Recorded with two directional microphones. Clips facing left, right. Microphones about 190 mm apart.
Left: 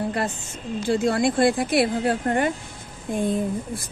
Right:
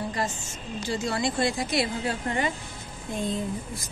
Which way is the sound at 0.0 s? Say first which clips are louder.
Left 4 dB; 60° left (ahead or behind).